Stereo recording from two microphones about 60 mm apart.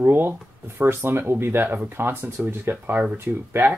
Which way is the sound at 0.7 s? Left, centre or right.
Right.